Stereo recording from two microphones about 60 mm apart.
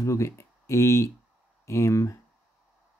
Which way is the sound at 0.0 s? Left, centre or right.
Left.